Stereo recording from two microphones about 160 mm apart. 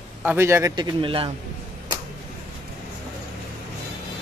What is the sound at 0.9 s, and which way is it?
Speech, 35° right (ahead or behind).